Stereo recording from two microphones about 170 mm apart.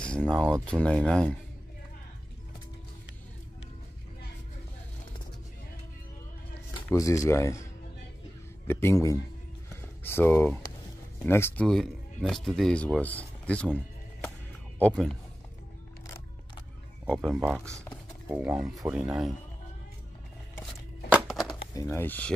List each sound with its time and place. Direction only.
0.2 s speech: centre (ahead or behind)
6.7 s speech: 20° left (ahead or behind)
8.6 s speech: 15° left (ahead or behind)
11.6 s speech: centre (ahead or behind)
17.1 s speech: centre (ahead or behind)
21.1 s music: centre (ahead or behind)
21.7 s speech: 15° left (ahead or behind)